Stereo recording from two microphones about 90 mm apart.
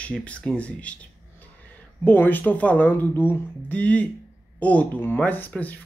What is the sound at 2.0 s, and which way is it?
Speech, 20° left (ahead or behind).